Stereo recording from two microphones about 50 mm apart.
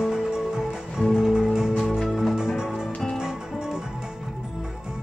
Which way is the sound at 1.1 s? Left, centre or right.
Centre.